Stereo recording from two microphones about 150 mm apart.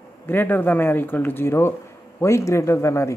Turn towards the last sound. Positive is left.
turn(degrees=20)  # may be behind; listen again after turning